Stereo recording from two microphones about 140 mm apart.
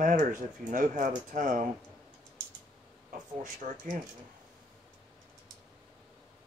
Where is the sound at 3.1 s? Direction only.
65° right (ahead or behind).